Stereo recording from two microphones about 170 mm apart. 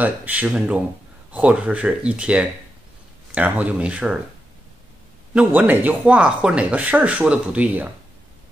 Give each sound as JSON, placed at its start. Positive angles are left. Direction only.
{"t": 0.0, "sound": "speech", "side_deg": -10}
{"t": 5.3, "sound": "speech", "side_deg": -5}